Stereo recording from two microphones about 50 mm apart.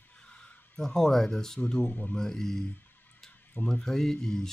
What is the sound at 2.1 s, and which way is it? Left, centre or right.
Speech, centre.